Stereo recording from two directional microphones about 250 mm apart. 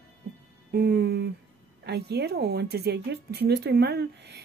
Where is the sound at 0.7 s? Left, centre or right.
Right.